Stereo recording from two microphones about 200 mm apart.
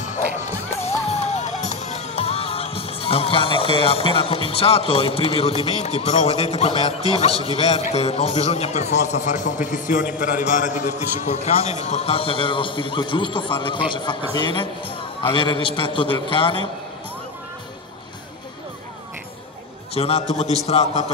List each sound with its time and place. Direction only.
0.0 s music: 35° left (ahead or behind)
7.4 s a man's voice: 30° left (ahead or behind)
19.9 s a man's voice: 30° left (ahead or behind)